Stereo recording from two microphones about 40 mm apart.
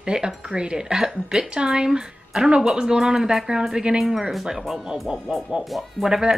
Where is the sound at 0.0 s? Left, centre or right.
Centre.